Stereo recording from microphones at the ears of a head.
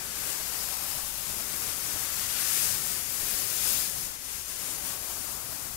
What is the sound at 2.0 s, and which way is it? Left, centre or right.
Static, left.